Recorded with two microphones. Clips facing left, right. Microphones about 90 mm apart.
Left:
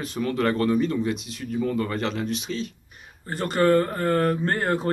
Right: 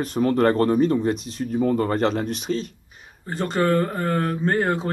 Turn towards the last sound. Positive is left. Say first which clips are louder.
# right 2 dB
turn(degrees=0)  # may be behind; listen again after turning